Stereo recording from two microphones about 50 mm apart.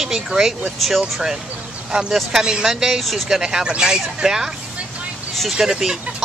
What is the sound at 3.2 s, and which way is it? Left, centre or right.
Speech, centre.